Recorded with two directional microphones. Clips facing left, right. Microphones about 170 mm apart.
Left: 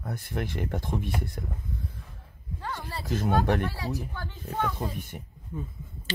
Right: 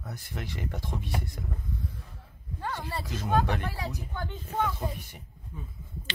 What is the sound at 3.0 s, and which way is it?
Speech, 55° left (ahead or behind).